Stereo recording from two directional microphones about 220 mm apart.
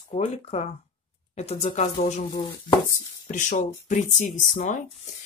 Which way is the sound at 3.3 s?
35° left (ahead or behind).